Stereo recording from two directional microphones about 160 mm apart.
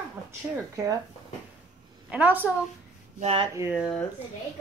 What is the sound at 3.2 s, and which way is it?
Speech, 40° right (ahead or behind).